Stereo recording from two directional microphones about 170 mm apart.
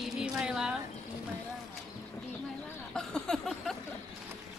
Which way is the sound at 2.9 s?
5° left (ahead or behind).